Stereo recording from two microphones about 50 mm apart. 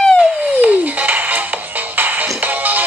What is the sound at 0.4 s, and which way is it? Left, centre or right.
Music, right.